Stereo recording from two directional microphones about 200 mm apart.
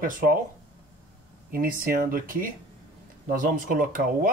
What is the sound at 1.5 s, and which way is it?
Speech, 45° right (ahead or behind).